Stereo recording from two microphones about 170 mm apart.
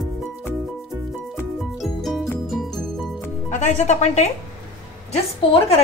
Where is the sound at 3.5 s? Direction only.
45° left (ahead or behind).